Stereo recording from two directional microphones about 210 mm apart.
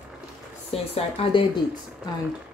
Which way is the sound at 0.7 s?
25° left (ahead or behind).